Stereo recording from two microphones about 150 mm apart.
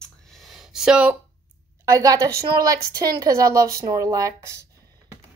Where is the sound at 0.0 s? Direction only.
Centre (ahead or behind).